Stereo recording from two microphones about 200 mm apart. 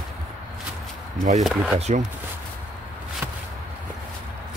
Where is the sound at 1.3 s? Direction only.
Centre (ahead or behind).